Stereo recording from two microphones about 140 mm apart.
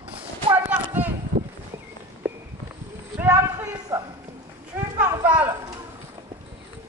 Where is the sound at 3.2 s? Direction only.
15° right (ahead or behind).